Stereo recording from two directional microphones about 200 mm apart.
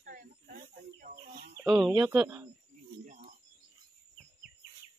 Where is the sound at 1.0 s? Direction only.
45° right (ahead or behind).